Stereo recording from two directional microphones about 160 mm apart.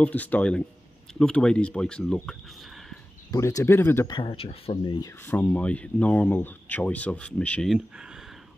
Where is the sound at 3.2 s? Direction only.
20° left (ahead or behind).